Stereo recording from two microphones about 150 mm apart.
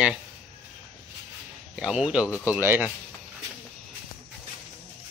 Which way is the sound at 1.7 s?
5° right (ahead or behind).